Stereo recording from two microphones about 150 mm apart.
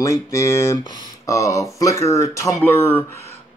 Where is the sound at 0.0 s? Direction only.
20° left (ahead or behind).